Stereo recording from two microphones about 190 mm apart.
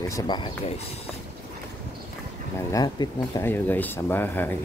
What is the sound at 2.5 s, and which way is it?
Speech, 20° left (ahead or behind).